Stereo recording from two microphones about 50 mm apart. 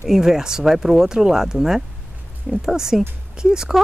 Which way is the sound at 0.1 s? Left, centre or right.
Centre.